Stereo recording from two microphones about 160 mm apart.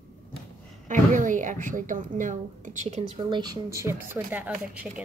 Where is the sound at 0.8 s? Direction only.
55° right (ahead or behind).